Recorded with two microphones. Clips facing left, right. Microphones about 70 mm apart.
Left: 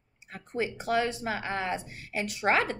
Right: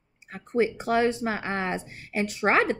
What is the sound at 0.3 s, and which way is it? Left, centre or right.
Speech, right.